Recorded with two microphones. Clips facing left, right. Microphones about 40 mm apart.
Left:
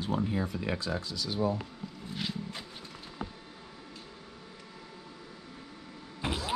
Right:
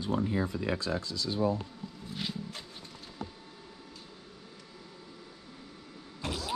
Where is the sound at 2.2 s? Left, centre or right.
Centre.